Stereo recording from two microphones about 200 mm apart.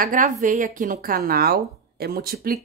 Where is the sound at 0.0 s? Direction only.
40° right (ahead or behind).